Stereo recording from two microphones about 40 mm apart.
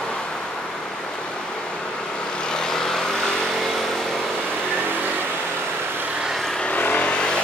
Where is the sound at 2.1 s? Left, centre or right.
Left.